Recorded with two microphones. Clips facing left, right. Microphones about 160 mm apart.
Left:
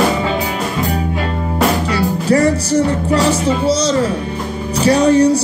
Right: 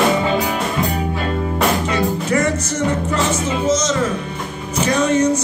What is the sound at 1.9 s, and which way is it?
Music, 35° left (ahead or behind).